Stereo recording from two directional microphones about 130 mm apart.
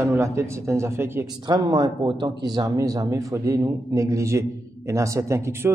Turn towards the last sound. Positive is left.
turn(degrees=-20)  # may be behind; listen again after turning